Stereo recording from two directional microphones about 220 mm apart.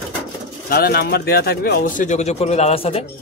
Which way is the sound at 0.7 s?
45° left (ahead or behind).